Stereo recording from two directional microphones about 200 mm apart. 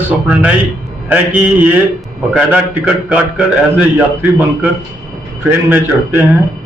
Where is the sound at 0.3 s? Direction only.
5° right (ahead or behind).